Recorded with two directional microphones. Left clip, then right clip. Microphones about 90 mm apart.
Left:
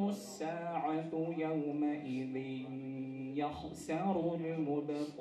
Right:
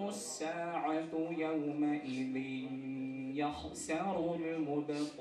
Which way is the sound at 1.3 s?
20° left (ahead or behind).